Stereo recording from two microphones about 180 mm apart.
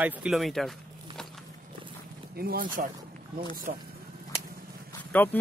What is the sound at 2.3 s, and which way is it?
Speech, 55° right (ahead or behind).